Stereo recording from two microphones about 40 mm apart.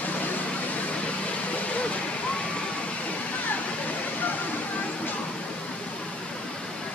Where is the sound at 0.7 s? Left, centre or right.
Left.